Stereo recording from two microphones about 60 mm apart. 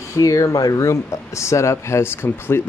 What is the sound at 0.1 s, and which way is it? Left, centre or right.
Speech, left.